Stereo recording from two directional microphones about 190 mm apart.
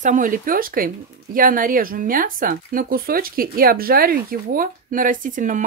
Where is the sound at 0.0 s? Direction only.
40° right (ahead or behind).